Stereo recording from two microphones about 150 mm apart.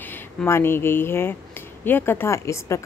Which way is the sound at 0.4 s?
15° left (ahead or behind).